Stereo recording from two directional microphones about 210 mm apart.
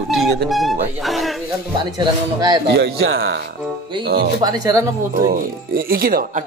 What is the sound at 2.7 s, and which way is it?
Speech, 65° right (ahead or behind).